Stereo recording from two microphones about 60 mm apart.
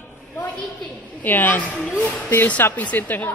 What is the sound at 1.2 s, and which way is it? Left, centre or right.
A man's voice, left.